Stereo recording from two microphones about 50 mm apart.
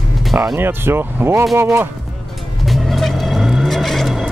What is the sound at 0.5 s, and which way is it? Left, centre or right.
Speech, right.